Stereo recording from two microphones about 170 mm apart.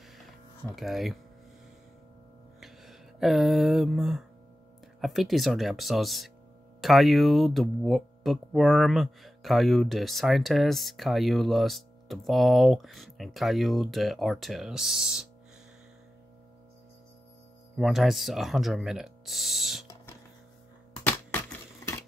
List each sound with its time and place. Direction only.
0.7 s speech: centre (ahead or behind)
2.6 s a sound: centre (ahead or behind)
5.0 s speech: centre (ahead or behind)
17.7 s speech: centre (ahead or behind)
21.0 s crushing: 10° left (ahead or behind)